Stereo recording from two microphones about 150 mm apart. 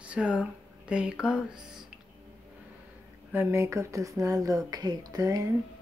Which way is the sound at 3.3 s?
20° right (ahead or behind).